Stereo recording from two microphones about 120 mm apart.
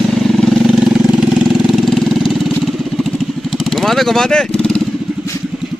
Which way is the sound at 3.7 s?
Centre (ahead or behind).